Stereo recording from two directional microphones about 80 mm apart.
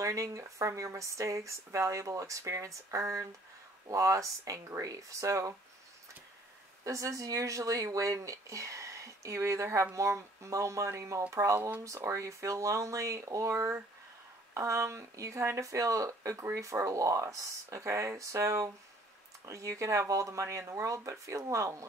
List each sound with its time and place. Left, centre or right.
0.0 s speech: right
6.8 s speech: right